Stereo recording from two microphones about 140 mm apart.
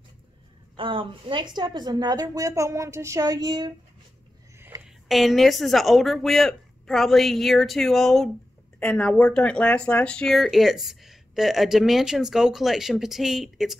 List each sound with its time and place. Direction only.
0.7 s a woman's voice: 40° right (ahead or behind)
4.6 s a sound: 15° right (ahead or behind)
4.8 s speech: centre (ahead or behind)